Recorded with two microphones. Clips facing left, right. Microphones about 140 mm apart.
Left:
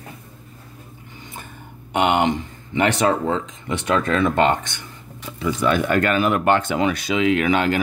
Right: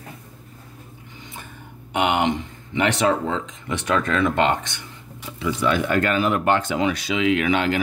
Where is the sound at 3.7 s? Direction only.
30° left (ahead or behind).